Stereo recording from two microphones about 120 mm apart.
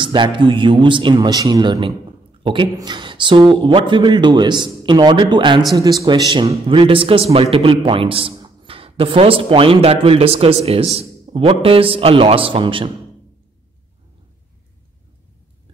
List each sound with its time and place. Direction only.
0.0 s speech: 45° right (ahead or behind)
6.7 s speech: 45° right (ahead or behind)